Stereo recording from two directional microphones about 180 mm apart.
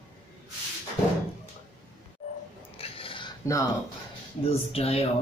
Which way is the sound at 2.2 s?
40° left (ahead or behind).